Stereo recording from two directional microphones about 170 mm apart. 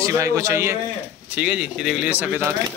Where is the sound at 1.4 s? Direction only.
5° right (ahead or behind).